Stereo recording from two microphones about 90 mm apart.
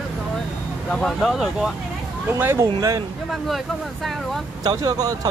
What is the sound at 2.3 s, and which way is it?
Speech, 25° right (ahead or behind).